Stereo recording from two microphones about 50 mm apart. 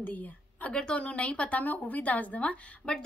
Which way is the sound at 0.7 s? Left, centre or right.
Left.